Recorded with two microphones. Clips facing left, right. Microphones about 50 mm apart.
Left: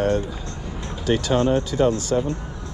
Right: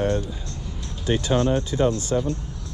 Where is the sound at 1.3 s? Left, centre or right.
Left.